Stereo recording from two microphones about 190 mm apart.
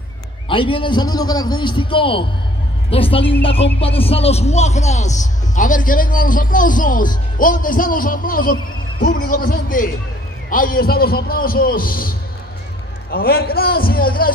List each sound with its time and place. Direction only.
0.5 s a man's voice: 25° left (ahead or behind); by 14.3 s 50° left (ahead or behind)